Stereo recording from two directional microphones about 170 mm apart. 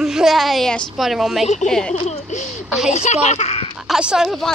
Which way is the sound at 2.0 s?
40° left (ahead or behind).